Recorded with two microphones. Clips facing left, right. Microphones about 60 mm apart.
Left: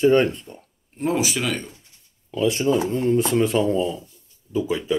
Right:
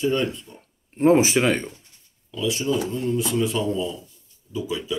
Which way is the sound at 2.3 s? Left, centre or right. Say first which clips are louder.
Left 4 dB; left.